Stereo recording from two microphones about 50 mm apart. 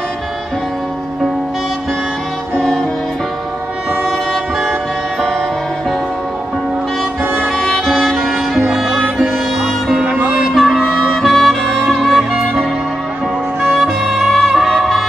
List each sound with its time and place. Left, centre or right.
4.0 s train: centre
7.5 s music: centre
8.6 s music: centre
9.2 s sitar: centre
10.0 s music: right
10.5 s music: centre
13.7 s music: centre